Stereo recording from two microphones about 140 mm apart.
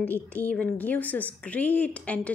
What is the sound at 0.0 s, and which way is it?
A woman's voice, 10° left (ahead or behind).